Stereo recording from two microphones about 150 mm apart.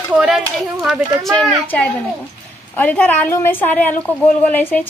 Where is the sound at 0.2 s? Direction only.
5° right (ahead or behind).